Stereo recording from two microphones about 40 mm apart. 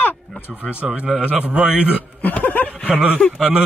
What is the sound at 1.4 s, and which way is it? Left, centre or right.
Speech, right.